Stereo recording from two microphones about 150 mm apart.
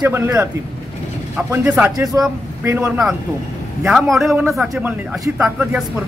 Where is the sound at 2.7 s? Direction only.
10° right (ahead or behind).